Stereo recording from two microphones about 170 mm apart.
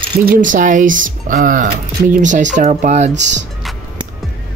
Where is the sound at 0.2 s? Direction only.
55° right (ahead or behind).